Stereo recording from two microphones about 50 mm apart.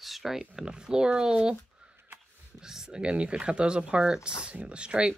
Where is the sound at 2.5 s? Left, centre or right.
Centre.